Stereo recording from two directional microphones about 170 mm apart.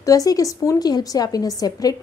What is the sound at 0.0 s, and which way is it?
A woman's voice, 20° left (ahead or behind).